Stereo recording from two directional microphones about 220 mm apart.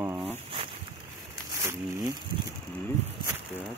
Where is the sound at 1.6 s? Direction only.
15° right (ahead or behind).